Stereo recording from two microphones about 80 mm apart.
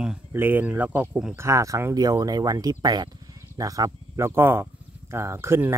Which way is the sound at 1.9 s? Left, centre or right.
Right.